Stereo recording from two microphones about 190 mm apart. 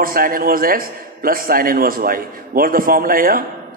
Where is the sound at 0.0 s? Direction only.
50° right (ahead or behind).